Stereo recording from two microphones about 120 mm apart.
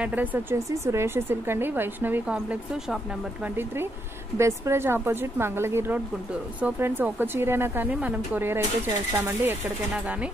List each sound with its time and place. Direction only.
0.0 s a woman's voice: 15° right (ahead or behind)
3.5 s a woman's voice: 20° right (ahead or behind)